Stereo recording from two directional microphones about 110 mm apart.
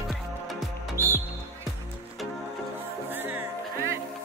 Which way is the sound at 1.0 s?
25° right (ahead or behind).